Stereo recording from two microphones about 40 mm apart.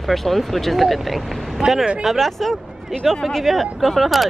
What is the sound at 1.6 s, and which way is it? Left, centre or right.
Speech, right.